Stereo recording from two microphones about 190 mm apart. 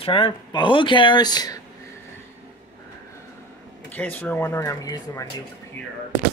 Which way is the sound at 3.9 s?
10° left (ahead or behind).